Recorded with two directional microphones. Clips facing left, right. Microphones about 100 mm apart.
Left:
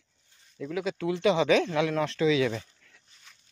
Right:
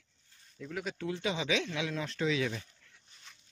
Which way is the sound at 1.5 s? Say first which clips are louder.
Left 9 dB; 50° left (ahead or behind).